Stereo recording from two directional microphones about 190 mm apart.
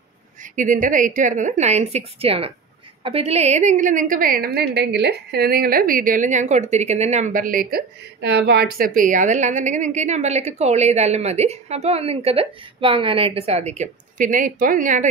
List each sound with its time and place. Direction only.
0.6 s a woman's voice: 45° right (ahead or behind)